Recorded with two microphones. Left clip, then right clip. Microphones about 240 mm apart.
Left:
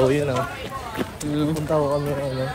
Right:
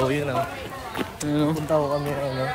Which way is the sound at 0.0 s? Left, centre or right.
Centre.